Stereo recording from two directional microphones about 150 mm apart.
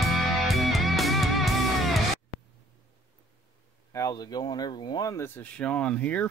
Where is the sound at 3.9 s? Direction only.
25° left (ahead or behind).